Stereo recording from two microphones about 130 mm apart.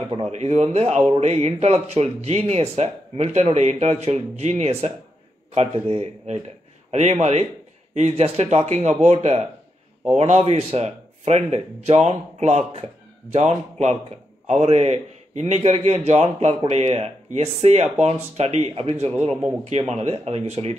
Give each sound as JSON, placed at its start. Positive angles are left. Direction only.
{"t": 0.3, "sound": "a man's voice", "side_deg": -55}